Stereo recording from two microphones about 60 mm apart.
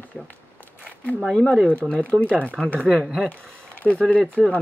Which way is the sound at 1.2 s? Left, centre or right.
Centre.